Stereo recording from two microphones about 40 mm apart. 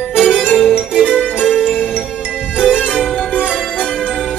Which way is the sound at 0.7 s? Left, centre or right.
Right.